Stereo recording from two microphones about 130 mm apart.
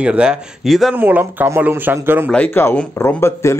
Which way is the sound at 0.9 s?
15° right (ahead or behind).